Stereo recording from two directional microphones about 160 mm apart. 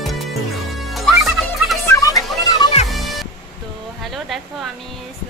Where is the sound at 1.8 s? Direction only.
20° left (ahead or behind).